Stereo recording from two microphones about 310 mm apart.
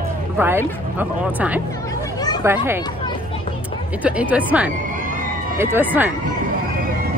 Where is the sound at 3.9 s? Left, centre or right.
Centre.